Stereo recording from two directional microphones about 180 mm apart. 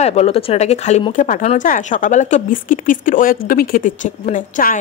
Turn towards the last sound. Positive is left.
turn(degrees=50)  # may be behind; listen again after turning